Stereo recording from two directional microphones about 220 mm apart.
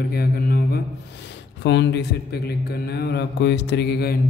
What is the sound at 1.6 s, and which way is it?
Mantra, 55° left (ahead or behind).